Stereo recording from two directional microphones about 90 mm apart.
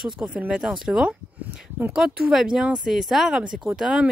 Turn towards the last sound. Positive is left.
turn(degrees=-5)  # may be behind; listen again after turning